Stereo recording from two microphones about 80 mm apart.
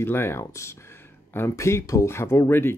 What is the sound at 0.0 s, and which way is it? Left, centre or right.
Speech, left.